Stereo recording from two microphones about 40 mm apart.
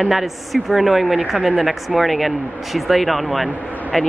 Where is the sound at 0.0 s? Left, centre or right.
Centre.